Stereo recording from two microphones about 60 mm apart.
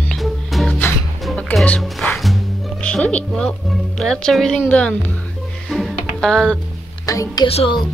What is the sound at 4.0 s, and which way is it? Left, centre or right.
Speech, centre.